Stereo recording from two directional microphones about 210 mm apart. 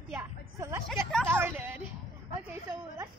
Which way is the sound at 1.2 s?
10° right (ahead or behind).